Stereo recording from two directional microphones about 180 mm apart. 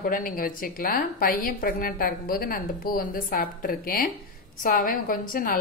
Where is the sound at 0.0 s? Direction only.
50° left (ahead or behind).